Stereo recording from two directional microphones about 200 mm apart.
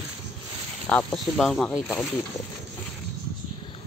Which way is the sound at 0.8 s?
5° left (ahead or behind).